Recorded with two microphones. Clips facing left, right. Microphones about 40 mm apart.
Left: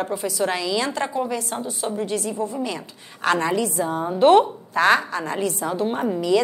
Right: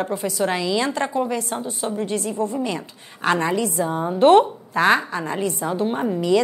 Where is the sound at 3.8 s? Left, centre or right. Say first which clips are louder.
Right 1 dB; centre.